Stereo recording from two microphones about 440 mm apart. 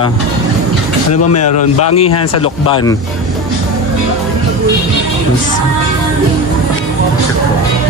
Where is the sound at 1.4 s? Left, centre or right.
Left.